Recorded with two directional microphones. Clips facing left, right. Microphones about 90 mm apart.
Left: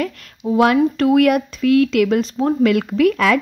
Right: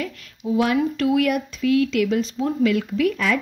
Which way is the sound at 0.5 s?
60° left (ahead or behind).